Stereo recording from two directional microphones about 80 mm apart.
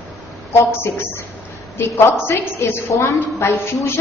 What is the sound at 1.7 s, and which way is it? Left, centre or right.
A woman's voice, left.